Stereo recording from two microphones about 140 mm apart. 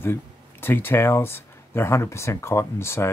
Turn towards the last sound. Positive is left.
turn(degrees=20)  # may be behind; listen again after turning